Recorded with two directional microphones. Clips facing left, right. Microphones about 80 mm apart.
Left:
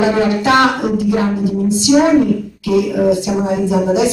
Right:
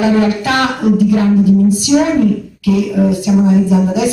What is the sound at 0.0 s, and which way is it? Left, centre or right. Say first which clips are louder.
Music: right 1 dB; left.